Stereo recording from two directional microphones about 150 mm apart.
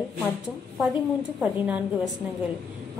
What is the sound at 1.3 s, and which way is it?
Speech, 5° right (ahead or behind).